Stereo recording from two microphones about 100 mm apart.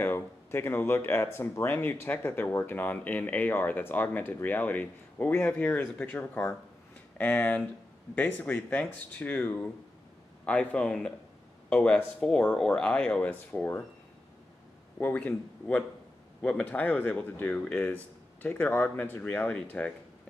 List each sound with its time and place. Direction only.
0.0 s speech: 20° left (ahead or behind)
15.0 s speech: 20° left (ahead or behind)